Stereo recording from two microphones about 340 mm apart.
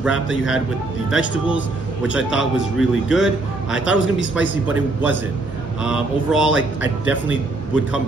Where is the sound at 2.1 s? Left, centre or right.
Centre.